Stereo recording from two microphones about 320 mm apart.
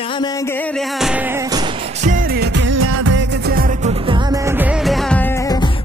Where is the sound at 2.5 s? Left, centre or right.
Right.